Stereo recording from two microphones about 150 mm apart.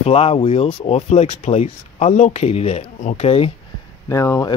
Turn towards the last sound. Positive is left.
turn(degrees=20)  # may be behind; listen again after turning